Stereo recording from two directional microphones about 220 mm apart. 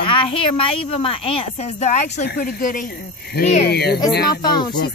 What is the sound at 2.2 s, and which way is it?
Speech, 50° left (ahead or behind).